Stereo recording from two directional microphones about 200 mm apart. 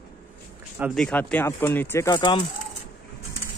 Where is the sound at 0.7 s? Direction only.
5° right (ahead or behind).